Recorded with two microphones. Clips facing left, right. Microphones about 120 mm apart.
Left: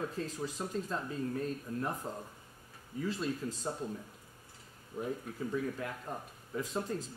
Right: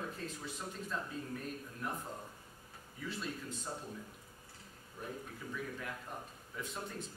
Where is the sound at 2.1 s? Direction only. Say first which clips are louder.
Left 4 dB; 35° left (ahead or behind).